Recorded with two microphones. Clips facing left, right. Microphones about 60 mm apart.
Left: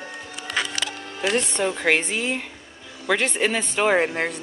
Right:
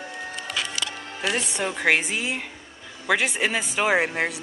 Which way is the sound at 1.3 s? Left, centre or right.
Centre.